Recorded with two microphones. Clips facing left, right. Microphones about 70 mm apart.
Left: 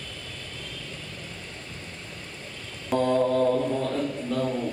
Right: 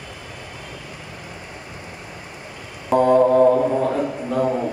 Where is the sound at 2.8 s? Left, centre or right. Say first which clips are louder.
Right 8 dB; centre.